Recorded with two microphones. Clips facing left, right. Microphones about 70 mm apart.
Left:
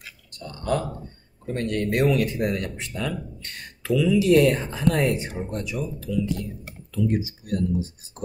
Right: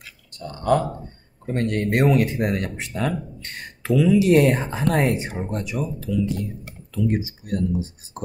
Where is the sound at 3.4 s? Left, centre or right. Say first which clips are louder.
Right 3 dB; right.